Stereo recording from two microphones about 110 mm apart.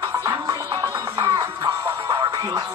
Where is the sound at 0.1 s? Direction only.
25° right (ahead or behind).